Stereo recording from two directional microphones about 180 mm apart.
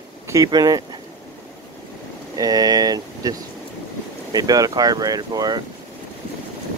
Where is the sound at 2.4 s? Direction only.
20° right (ahead or behind).